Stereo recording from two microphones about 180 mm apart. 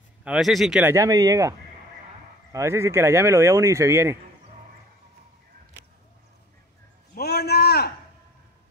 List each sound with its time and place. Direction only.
0.2 s speech: 5° right (ahead or behind)
0.9 s speech: 20° right (ahead or behind)
2.5 s speech: 15° right (ahead or behind)
7.2 s a sound: 60° left (ahead or behind)